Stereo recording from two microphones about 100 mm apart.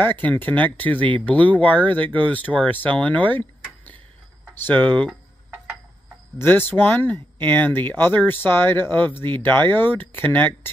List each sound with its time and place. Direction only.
0.0 s speech: 15° left (ahead or behind)
4.6 s speech: 15° left (ahead or behind)
6.3 s speech: 20° left (ahead or behind)